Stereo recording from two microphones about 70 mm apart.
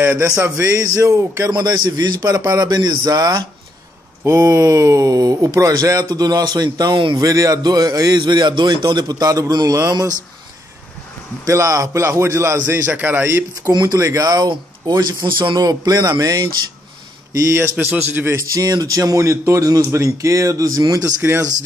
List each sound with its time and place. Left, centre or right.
0.0 s a man's voice: right
0.6 s speech: right
1.7 s a man's voice: right
4.2 s speech: right
7.6 s a man's voice: right
11.4 s a man's voice: right
12.8 s a man's voice: right
13.6 s a man's voice: right
13.9 s speech: right
15.5 s a man's voice: right
16.2 s speech: right
17.4 s a man's voice: right
17.7 s a man's voice: right
18.5 s a man's voice: right